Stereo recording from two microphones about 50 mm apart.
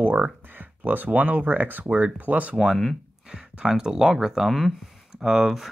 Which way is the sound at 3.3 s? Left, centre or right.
Centre.